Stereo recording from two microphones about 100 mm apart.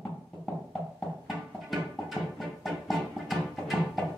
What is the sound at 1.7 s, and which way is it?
Music, centre (ahead or behind).